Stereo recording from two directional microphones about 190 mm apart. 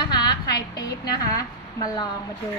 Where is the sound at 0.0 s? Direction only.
20° left (ahead or behind).